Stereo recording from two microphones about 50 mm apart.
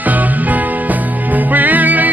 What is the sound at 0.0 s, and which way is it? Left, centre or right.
Music, right.